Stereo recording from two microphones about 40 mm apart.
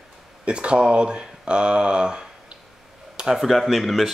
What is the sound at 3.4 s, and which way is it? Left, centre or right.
Speech, centre.